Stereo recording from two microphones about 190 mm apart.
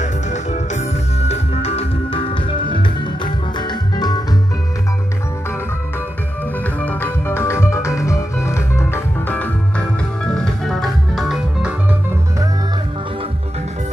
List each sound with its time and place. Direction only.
0.0 s music: 40° left (ahead or behind); by 4.2 s 20° left (ahead or behind)
6.8 s music: 10° left (ahead or behind)